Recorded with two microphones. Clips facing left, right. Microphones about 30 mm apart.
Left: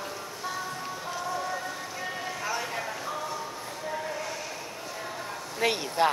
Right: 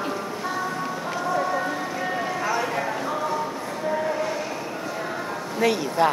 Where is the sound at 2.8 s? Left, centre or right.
Right.